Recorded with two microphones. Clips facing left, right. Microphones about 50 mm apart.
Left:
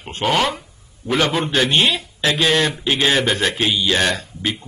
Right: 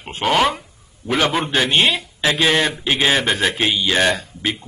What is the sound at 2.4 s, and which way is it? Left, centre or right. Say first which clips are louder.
A man's voice: even; centre.